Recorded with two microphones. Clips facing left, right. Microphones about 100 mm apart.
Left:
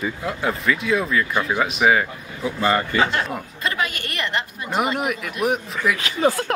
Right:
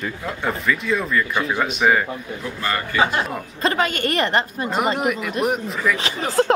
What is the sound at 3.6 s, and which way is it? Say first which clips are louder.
A woman's voice: right 6 dB; 35° right (ahead or behind).